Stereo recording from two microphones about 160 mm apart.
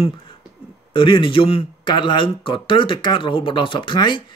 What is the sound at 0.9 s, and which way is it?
Speech, 35° left (ahead or behind).